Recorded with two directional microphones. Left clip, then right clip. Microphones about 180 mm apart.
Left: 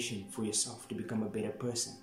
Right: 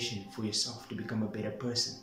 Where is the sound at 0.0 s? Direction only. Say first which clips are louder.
Right 1 dB; 15° left (ahead or behind).